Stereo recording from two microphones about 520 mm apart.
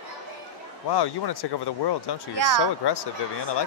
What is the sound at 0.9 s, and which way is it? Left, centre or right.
Speech, left.